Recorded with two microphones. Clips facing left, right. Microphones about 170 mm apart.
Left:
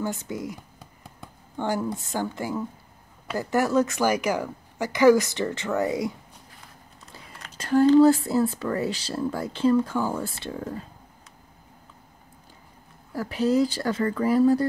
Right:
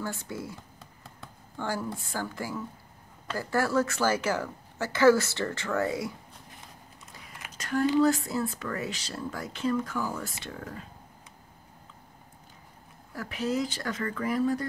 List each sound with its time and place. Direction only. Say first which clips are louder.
0.0 s a woman's voice: left 5 dB; 20° left (ahead or behind)
7.5 s speech: left 8 dB; 30° left (ahead or behind)
13.1 s speech: left 7 dB; 30° left (ahead or behind)